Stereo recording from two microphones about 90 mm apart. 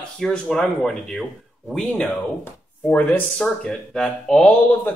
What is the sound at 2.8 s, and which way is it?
Speech, 20° left (ahead or behind).